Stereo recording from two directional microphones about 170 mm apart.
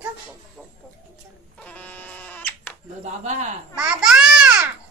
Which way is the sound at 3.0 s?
40° right (ahead or behind).